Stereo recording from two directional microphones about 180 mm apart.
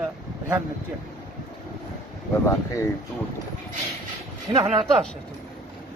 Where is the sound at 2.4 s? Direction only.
15° left (ahead or behind).